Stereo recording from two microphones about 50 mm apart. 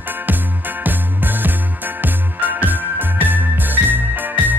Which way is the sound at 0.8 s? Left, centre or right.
Right.